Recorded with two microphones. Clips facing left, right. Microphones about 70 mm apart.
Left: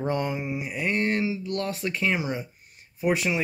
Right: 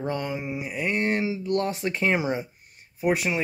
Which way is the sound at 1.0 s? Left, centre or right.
Right.